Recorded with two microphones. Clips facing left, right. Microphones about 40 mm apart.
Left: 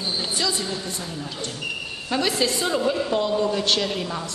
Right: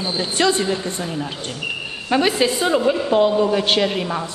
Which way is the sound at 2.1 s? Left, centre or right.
Right.